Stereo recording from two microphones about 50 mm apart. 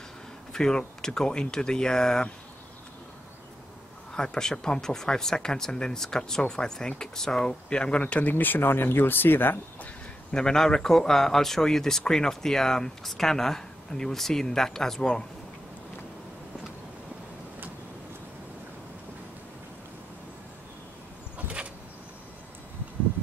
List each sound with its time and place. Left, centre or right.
0.5 s speech: centre
4.1 s speech: centre
8.3 s speech: left
10.3 s speech: centre